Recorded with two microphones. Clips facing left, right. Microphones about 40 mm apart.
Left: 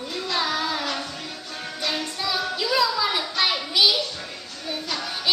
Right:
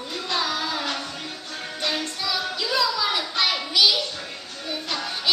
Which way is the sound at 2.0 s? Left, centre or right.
Centre.